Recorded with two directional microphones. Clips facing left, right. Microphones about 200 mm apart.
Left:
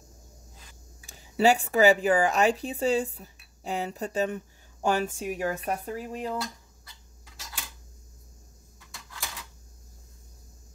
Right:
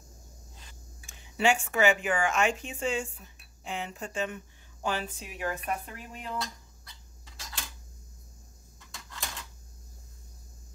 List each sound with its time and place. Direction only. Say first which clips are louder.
1.0 s speech: left 5 dB; 40° left (ahead or behind)
6.3 s dishes: left 3 dB; 5° left (ahead or behind)